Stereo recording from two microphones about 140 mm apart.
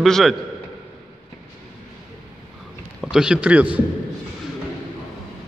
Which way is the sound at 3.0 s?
5° right (ahead or behind).